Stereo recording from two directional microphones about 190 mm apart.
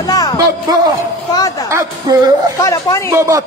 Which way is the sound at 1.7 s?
15° right (ahead or behind).